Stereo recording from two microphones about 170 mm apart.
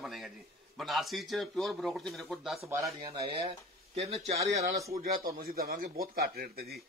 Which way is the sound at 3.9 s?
35° right (ahead or behind).